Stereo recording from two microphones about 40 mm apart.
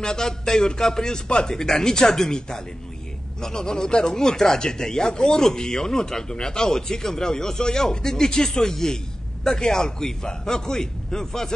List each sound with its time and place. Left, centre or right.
0.0 s speech: centre